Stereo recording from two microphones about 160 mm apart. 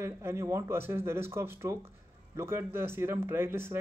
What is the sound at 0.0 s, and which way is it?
Speech, 15° right (ahead or behind).